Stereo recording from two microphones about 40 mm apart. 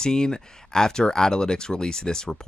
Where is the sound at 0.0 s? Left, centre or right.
Centre.